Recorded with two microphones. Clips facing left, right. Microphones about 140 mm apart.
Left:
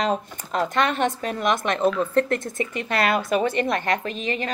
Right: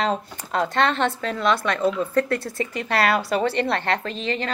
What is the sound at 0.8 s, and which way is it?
A woman's voice, 15° left (ahead or behind).